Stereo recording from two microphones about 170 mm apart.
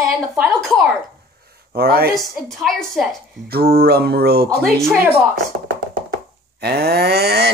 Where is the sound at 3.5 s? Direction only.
65° right (ahead or behind).